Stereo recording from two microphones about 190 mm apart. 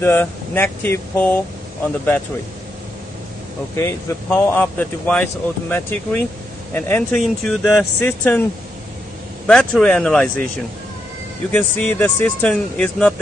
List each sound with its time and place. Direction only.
0.0 s speech: 10° left (ahead or behind)
3.7 s speech: 10° left (ahead or behind)
9.5 s speech: 5° left (ahead or behind)
11.5 s speech: 10° left (ahead or behind)